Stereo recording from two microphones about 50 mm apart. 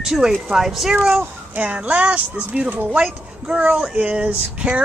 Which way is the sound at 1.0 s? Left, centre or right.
Right.